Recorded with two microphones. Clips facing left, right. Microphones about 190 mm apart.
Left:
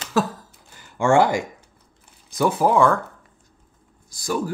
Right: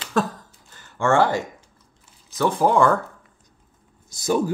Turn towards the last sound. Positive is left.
turn(degrees=-20)  # may be behind; listen again after turning